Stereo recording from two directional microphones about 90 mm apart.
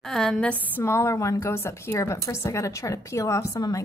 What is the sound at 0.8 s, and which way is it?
A woman's voice, 30° left (ahead or behind).